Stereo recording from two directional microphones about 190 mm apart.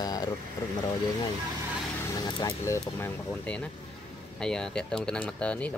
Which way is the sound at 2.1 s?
20° left (ahead or behind).